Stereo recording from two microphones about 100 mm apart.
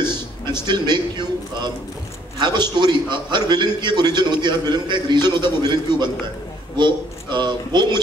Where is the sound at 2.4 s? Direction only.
45° right (ahead or behind).